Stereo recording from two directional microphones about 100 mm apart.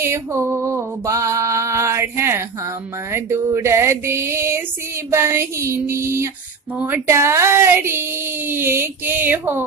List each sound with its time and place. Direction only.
0.0 s mantra: 25° right (ahead or behind)
3.1 s speech: 25° right (ahead or behind)